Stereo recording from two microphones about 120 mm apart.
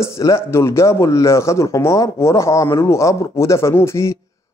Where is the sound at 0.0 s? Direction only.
25° left (ahead or behind).